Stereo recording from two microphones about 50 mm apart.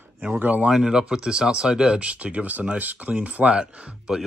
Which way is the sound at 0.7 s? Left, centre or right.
Centre.